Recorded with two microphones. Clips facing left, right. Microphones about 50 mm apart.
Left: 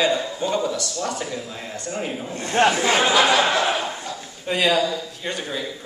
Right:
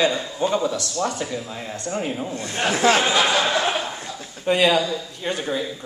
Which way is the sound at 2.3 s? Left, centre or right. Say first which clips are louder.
Left 11 dB; left.